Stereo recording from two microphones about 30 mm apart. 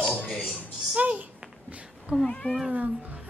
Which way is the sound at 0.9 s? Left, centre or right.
Right.